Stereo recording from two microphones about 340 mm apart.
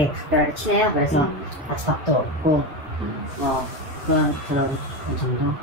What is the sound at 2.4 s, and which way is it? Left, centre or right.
Speech, right.